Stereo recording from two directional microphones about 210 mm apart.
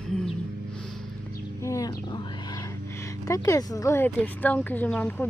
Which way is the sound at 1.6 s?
15° left (ahead or behind).